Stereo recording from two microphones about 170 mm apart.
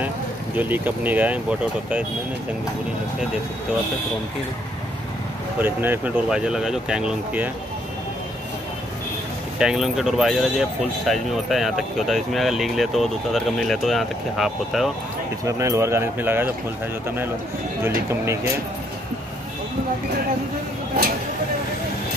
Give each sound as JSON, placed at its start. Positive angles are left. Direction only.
{"t": 0.6, "sound": "speech", "side_deg": -10}
{"t": 5.6, "sound": "speech", "side_deg": -10}
{"t": 9.6, "sound": "speech", "side_deg": -5}
{"t": 15.4, "sound": "speech", "side_deg": -20}
{"t": 17.8, "sound": "speech", "side_deg": -15}